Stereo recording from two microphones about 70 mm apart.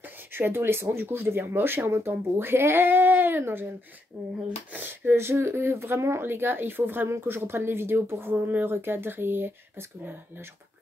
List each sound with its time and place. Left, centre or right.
0.3 s speech: right